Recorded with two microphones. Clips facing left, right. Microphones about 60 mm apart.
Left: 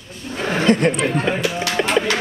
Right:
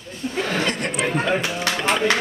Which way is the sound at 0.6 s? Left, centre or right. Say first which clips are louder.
Left 8 dB; left.